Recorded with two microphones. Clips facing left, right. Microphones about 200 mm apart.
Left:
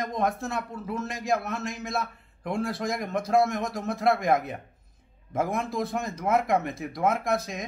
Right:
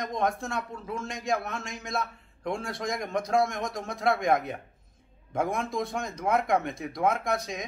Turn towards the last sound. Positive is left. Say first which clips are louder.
# left 2 dB
turn(degrees=0)  # may be behind; listen again after turning